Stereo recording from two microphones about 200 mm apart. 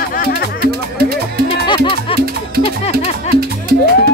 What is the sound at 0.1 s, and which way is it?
Music, 45° left (ahead or behind).